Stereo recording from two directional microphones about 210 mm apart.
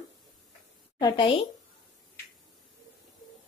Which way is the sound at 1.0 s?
20° left (ahead or behind).